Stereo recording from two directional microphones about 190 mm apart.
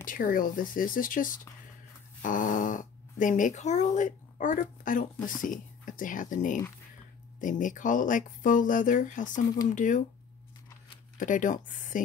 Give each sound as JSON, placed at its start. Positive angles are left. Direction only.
{"t": 0.0, "sound": "speech", "side_deg": 45}
{"t": 11.1, "sound": "speech", "side_deg": 45}